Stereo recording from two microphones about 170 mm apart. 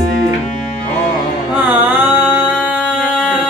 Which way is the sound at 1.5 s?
10° right (ahead or behind).